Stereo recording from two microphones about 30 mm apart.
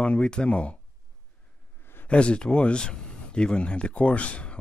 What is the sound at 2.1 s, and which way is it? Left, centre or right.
Speech, left.